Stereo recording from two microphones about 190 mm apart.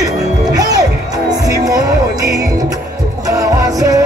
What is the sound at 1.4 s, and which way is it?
Music, 20° right (ahead or behind).